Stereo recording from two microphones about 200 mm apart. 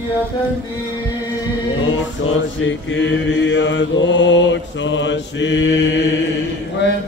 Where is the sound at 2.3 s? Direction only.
70° left (ahead or behind).